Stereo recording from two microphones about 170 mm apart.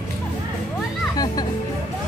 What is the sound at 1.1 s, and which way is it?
Music, 25° left (ahead or behind).